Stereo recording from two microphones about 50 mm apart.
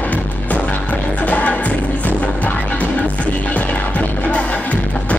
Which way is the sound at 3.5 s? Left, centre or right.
Left.